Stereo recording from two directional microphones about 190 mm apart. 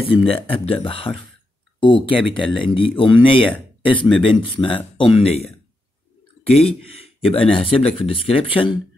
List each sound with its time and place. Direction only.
0.0 s speech: 30° left (ahead or behind)
6.6 s speech: 30° left (ahead or behind)